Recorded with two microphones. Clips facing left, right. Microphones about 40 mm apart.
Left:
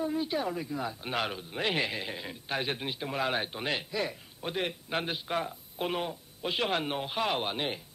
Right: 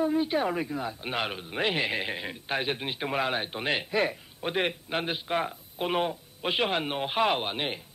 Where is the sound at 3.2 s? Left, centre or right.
Centre.